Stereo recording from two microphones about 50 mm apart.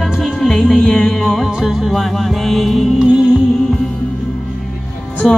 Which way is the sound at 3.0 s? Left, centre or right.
Centre.